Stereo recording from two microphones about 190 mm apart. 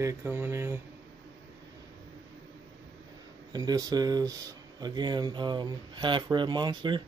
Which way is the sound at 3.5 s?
20° right (ahead or behind).